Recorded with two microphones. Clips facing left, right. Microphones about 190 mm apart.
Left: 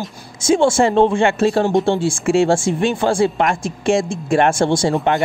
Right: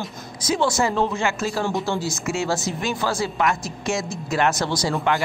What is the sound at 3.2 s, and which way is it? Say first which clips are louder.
Speech: left 6 dB; 50° left (ahead or behind).